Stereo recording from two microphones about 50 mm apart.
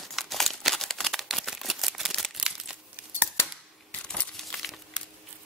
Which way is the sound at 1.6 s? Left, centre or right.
Centre.